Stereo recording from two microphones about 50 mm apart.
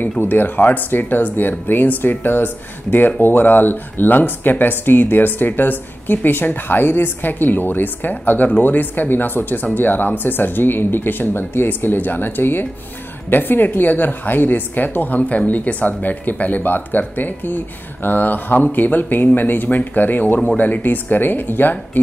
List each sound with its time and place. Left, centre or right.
0.2 s speech: left